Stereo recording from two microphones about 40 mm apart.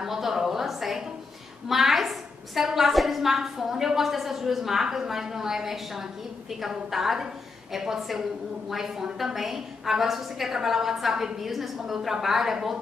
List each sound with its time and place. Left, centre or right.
0.0 s a woman's voice: centre